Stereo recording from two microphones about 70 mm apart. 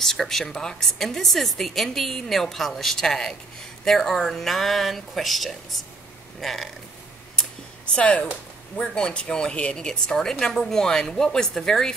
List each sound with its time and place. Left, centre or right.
0.0 s a woman's voice: centre
7.9 s speech: centre